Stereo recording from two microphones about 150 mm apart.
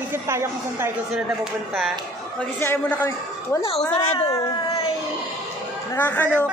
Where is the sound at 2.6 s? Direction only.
15° left (ahead or behind).